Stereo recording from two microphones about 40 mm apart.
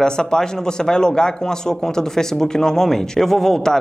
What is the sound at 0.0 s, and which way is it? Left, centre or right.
A man's voice, centre.